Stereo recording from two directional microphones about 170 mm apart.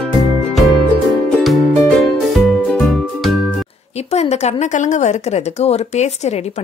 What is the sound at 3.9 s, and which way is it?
A woman's voice, 40° left (ahead or behind).